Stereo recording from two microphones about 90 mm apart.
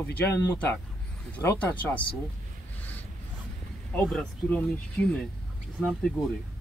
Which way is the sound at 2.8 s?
20° left (ahead or behind).